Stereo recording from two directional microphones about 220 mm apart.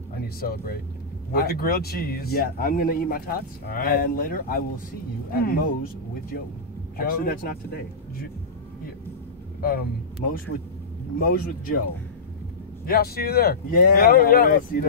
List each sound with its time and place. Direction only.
0.1 s speech: 45° left (ahead or behind)
7.0 s speech: 45° left (ahead or behind)
9.6 s speech: 40° left (ahead or behind)
11.1 s speech: 40° left (ahead or behind)
12.8 s speech: 45° left (ahead or behind)